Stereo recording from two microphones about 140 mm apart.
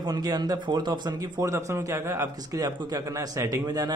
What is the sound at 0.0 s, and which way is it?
Speech, 30° right (ahead or behind).